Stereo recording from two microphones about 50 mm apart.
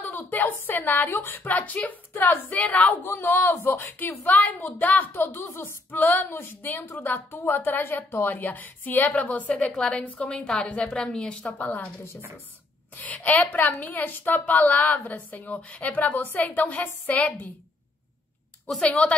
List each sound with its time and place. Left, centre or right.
0.0 s a woman's voice: left
2.6 s speech: left
3.0 s speech: left
4.2 s a woman's voice: left
5.1 s speech: left
5.5 s a sound: left
5.9 s a woman's voice: left; by 11.5 s centre
11.5 s a woman's voice: left
12.9 s a woman's voice: left
18.8 s speech: left